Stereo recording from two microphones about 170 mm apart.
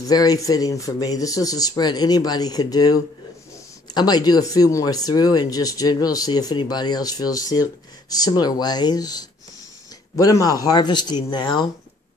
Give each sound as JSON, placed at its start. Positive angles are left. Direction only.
{"t": 0.0, "sound": "speech", "side_deg": 20}